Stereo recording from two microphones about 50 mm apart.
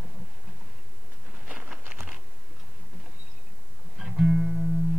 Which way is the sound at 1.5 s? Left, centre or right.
Right.